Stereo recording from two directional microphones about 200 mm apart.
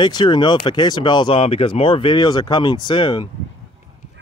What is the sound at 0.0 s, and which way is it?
Speech, 20° left (ahead or behind).